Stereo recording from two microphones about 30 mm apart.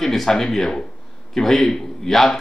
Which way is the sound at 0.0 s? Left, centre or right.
Centre.